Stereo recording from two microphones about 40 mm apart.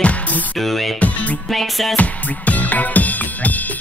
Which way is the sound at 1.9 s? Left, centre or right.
Left.